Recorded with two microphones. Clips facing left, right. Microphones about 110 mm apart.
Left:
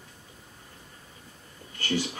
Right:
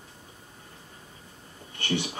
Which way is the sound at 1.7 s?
25° right (ahead or behind).